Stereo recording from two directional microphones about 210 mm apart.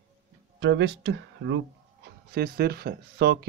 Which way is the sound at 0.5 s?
60° right (ahead or behind).